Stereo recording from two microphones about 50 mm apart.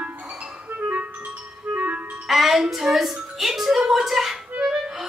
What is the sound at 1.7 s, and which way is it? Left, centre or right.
Clarinet, right.